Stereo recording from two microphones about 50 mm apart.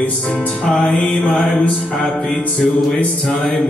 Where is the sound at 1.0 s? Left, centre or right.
Left.